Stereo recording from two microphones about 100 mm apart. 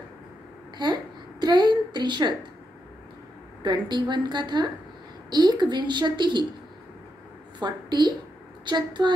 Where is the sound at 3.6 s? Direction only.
50° right (ahead or behind).